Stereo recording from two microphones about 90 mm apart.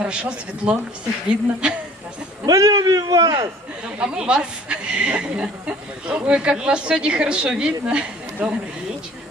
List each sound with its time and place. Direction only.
0.0 s speech: 10° right (ahead or behind)
2.4 s a man's voice: 40° right (ahead or behind)
4.0 s speech: 10° right (ahead or behind)